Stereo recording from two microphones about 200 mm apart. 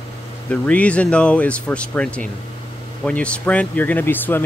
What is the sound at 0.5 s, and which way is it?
Speech, 5° left (ahead or behind).